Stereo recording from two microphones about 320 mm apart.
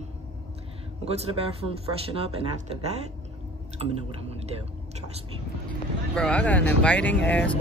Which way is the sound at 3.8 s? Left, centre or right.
Centre.